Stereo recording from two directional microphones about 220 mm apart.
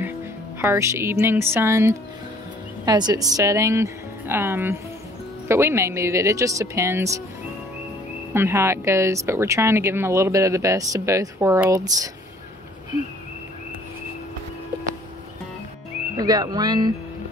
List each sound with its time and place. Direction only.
0.6 s speech: 10° right (ahead or behind)
8.3 s speech: 10° right (ahead or behind)
16.2 s speech: 15° right (ahead or behind)